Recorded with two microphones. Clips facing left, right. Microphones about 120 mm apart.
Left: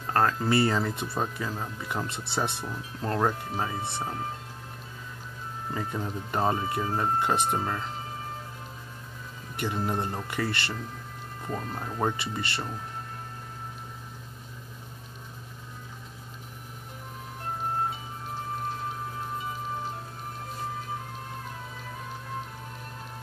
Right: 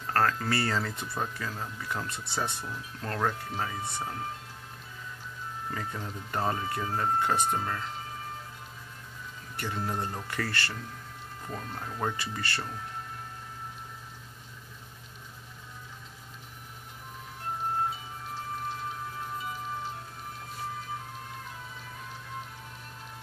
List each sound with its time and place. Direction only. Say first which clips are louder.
0.0 s speech: left 2 dB; 20° left (ahead or behind)
3.0 s speech: left 4 dB; 20° left (ahead or behind)
5.7 s speech: left 6 dB; 20° left (ahead or behind)
9.6 s speech: left 4 dB; 20° left (ahead or behind)
11.4 s speech: left 5 dB; 35° left (ahead or behind)
12.1 s speech: left 2 dB; 20° left (ahead or behind)